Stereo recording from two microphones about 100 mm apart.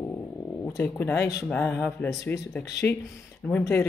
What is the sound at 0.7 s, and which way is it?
Speech, 20° left (ahead or behind).